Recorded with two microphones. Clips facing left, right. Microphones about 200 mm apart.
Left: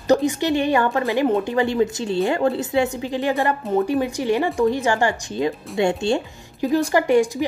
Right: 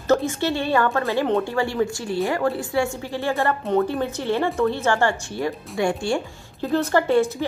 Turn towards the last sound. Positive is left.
turn(degrees=15)  # may be behind; listen again after turning